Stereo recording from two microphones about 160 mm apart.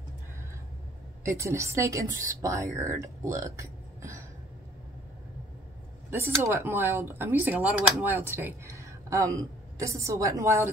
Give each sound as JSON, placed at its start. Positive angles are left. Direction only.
{"t": 1.2, "sound": "speech", "side_deg": -15}
{"t": 6.4, "sound": "speech", "side_deg": -15}